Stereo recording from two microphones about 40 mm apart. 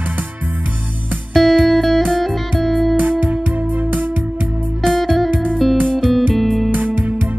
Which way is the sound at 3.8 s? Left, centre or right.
Right.